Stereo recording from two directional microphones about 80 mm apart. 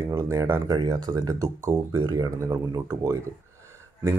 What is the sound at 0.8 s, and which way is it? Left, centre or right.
Speech, right.